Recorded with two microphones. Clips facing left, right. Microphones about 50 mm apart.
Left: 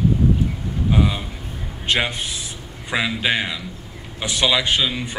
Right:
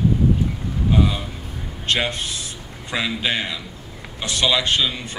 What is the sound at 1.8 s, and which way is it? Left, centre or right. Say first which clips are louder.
A man's voice: left 1 dB; centre.